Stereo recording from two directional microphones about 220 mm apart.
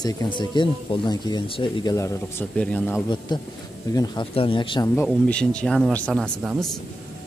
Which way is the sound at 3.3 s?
20° left (ahead or behind).